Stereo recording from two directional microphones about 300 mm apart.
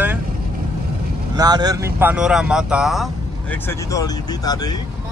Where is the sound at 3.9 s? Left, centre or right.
Centre.